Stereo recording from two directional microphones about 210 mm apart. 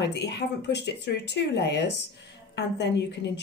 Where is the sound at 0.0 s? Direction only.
55° left (ahead or behind).